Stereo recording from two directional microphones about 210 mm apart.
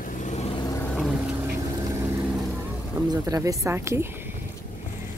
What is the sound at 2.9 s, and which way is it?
Speech, 15° right (ahead or behind).